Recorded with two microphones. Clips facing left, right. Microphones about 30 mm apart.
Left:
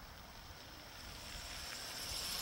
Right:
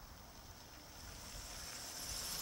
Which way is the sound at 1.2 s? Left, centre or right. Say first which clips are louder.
Left 4 dB; left.